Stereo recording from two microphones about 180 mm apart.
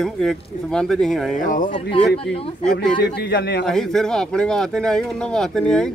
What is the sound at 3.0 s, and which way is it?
Speech, 65° left (ahead or behind).